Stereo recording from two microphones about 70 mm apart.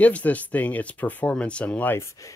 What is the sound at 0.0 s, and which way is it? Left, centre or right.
Speech, left.